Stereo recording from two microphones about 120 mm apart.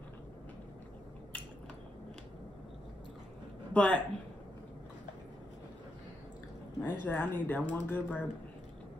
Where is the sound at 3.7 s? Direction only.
10° left (ahead or behind).